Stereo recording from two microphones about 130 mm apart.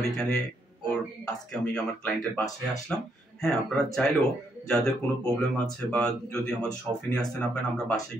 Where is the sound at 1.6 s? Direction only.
10° left (ahead or behind).